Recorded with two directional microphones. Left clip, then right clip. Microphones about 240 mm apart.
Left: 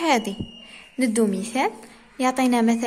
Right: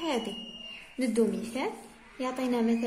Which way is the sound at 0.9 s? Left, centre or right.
Left.